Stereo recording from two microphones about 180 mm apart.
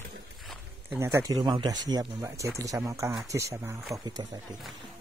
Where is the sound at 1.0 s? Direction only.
15° right (ahead or behind).